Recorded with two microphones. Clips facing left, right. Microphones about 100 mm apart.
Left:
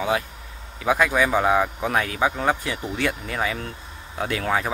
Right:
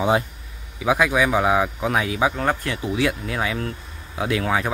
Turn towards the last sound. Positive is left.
turn(degrees=0)  # may be behind; listen again after turning